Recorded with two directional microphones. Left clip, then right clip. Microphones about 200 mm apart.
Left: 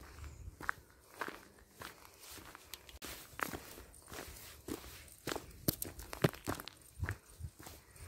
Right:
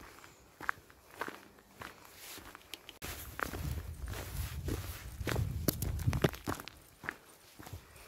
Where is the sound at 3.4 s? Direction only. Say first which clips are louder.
Right 2 dB; 10° right (ahead or behind).